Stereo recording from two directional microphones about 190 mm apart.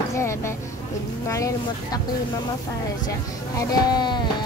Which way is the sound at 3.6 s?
20° left (ahead or behind).